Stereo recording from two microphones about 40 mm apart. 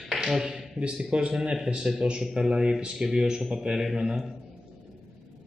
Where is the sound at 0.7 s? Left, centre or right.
Right.